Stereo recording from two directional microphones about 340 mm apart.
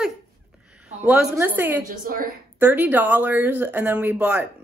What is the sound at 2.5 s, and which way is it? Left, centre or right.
Speech, centre.